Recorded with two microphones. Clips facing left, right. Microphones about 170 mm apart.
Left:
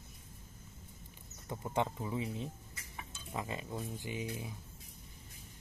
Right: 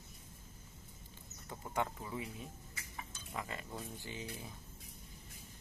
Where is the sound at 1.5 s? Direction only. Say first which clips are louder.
Left 4 dB; 20° left (ahead or behind).